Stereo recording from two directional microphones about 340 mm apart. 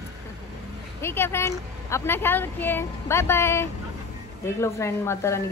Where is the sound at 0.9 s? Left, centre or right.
Centre.